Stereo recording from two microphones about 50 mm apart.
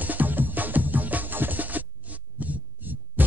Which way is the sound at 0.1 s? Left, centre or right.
Right.